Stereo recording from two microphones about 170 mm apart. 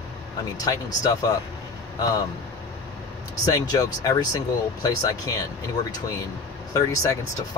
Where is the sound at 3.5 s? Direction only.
20° left (ahead or behind).